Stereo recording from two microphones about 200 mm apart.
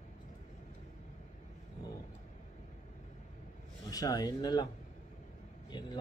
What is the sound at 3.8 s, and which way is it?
Speech, 20° left (ahead or behind).